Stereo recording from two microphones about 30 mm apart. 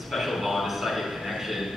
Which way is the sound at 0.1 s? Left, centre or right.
Centre.